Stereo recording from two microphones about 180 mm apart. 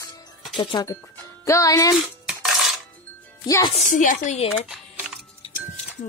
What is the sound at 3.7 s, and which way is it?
Speech, 40° left (ahead or behind).